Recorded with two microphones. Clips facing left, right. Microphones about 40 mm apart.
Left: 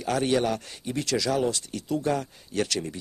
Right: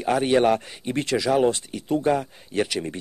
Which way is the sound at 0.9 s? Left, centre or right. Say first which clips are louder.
Right 4 dB; right.